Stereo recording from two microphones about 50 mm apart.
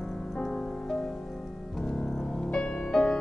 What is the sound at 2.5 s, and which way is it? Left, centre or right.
Music, centre.